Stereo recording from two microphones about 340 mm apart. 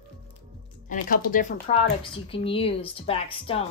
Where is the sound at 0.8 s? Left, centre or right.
Left.